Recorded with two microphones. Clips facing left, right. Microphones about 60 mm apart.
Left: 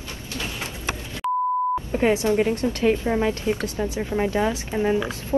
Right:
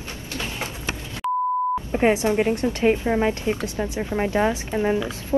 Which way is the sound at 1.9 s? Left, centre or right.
Right.